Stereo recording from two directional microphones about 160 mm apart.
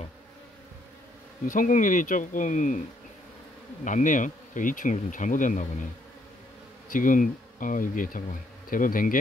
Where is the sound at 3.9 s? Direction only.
55° left (ahead or behind).